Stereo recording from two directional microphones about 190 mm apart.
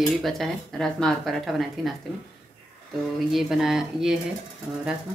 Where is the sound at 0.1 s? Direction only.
Centre (ahead or behind).